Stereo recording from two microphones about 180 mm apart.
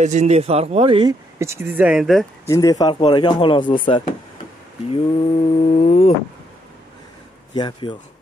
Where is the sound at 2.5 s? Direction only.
20° left (ahead or behind).